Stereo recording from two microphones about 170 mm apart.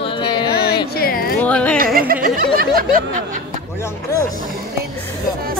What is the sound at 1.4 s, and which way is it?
Music, 5° left (ahead or behind).